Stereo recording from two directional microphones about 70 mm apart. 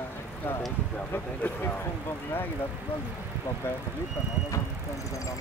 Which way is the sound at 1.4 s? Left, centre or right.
Left.